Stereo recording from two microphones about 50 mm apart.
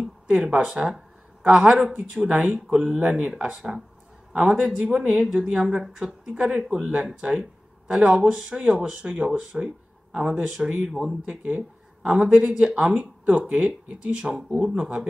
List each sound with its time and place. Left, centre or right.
0.3 s a woman's voice: right
10.9 s speech: centre
11.2 s a woman's voice: centre